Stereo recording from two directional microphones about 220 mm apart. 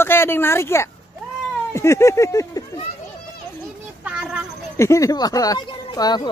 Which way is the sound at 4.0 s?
5° right (ahead or behind).